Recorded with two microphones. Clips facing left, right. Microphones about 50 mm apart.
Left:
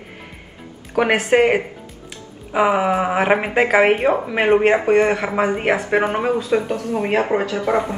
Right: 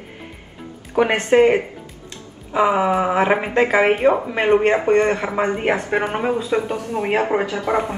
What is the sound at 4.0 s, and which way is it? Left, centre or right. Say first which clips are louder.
A man's voice: right 1 dB; centre.